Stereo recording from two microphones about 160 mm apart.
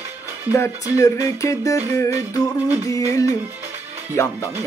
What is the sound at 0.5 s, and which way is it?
Speech, 20° left (ahead or behind).